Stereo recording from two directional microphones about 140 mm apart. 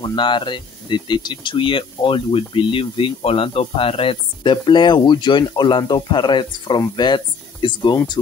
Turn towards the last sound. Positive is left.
turn(degrees=35)  # may be behind; listen again after turning